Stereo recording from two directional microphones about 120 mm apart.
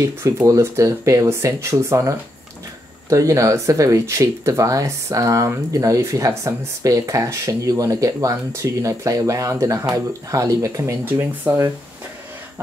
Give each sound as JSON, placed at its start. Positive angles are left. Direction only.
{"t": 0.0, "sound": "speech", "side_deg": -20}